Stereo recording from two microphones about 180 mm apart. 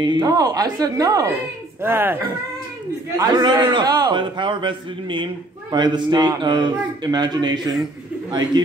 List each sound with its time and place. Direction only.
0.0 s a man's voice: 25° right (ahead or behind)
3.2 s a man's voice: 25° right (ahead or behind)